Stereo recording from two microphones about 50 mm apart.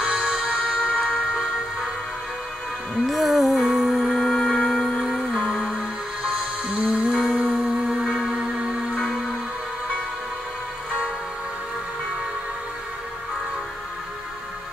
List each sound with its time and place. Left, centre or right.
0.0 s music: centre
3.0 s music: centre
5.7 s music: centre
7.5 s music: centre